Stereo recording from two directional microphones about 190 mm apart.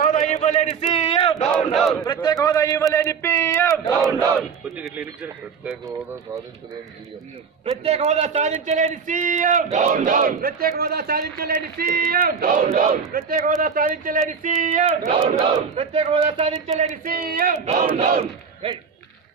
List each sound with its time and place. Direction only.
0.0 s a sound: 40° left (ahead or behind)
1.5 s battle cry: centre (ahead or behind)
2.2 s a man's voice: 20° left (ahead or behind)
4.4 s speech: 5° right (ahead or behind)
7.8 s battle cry: 35° right (ahead or behind)
9.4 s speech: 40° right (ahead or behind)
12.6 s battle cry: 40° right (ahead or behind)
13.1 s speech: 50° right (ahead or behind)
14.4 s battle cry: 45° right (ahead or behind)
17.0 s speech: 50° right (ahead or behind)
17.6 s battle cry: 35° right (ahead or behind)